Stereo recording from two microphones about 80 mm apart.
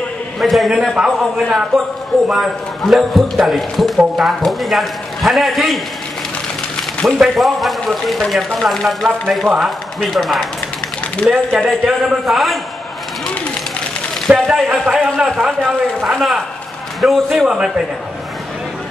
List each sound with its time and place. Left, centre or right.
0.4 s a man's voice: centre
6.8 s a man's voice: centre
11.2 s speech: centre
11.8 s a man's voice: centre
14.3 s a man's voice: centre
15.2 s a man's voice: centre